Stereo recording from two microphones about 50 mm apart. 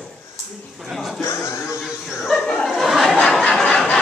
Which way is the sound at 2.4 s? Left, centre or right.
Centre.